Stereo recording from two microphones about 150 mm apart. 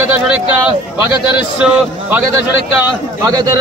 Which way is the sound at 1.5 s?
5° right (ahead or behind).